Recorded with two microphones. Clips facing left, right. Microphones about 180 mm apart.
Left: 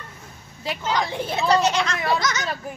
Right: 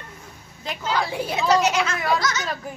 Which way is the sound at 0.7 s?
5° right (ahead or behind).